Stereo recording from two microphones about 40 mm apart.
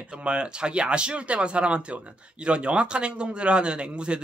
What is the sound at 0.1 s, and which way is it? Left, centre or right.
A man's voice, right.